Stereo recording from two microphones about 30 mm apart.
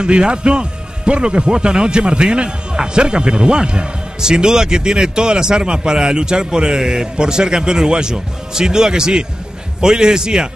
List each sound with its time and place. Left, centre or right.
0.0 s speech: right